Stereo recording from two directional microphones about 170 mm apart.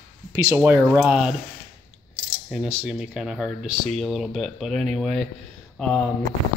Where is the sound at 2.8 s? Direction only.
5° right (ahead or behind).